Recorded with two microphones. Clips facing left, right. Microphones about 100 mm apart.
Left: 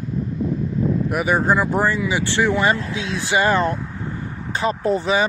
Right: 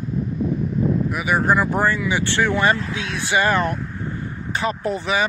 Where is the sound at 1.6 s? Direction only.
20° left (ahead or behind).